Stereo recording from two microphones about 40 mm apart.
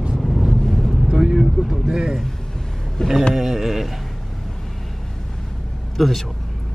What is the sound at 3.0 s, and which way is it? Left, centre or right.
Speech, centre.